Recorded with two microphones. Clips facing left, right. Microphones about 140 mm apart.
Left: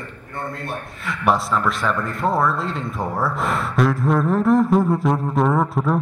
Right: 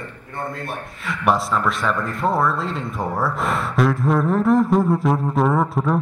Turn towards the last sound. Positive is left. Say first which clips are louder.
# even
turn(degrees=0)  # may be behind; listen again after turning